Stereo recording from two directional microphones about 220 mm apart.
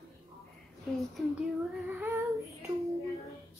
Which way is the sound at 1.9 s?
10° right (ahead or behind).